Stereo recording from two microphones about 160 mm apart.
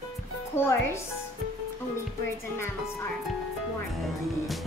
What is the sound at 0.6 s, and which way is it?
Speech, 15° left (ahead or behind).